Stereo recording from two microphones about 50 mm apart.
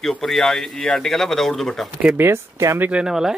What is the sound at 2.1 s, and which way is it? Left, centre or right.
Speech, right.